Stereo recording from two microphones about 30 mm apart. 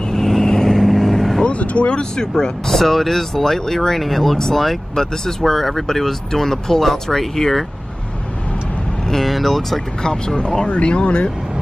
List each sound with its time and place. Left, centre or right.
0.1 s vehicle: centre
1.4 s vehicle: left
2.1 s speech: left
2.7 s speech: centre
9.2 s speech: centre
10.0 s speech: left
10.7 s speech: left